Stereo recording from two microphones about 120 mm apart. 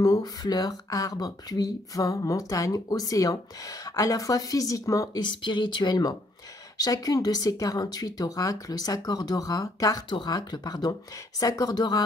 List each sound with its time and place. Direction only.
0.0 s speech: 30° left (ahead or behind)
5.2 s speech: 40° left (ahead or behind)